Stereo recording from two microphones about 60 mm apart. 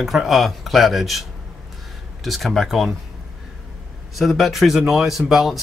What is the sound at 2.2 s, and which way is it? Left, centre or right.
Speech, centre.